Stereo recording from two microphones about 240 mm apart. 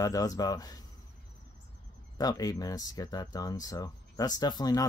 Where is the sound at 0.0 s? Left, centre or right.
Centre.